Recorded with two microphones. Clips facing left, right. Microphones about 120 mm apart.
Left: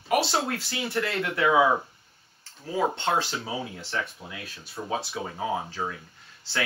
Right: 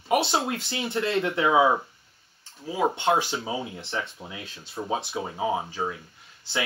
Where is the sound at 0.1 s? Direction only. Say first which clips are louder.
Right 1 dB; 20° right (ahead or behind).